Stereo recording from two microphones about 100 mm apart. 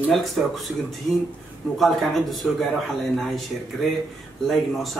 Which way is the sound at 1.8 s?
Centre (ahead or behind).